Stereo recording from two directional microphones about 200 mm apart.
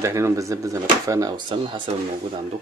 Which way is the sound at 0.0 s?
15° right (ahead or behind).